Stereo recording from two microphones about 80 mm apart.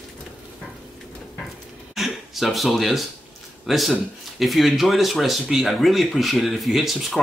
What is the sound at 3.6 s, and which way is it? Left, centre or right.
Speech, centre.